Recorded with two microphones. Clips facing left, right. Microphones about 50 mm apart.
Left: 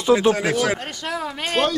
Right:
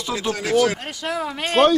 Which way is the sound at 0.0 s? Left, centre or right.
Left.